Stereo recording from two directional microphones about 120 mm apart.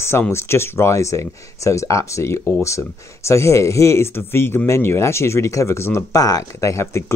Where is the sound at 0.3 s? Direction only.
20° left (ahead or behind).